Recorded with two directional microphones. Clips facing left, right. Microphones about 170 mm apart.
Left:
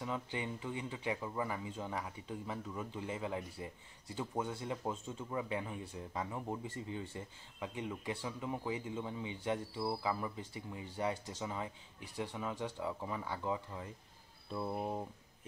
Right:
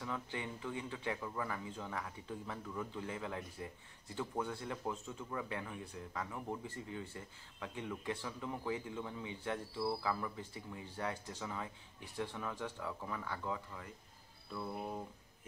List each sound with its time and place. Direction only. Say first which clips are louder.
0.0 s speech: left 2 dB; 15° left (ahead or behind)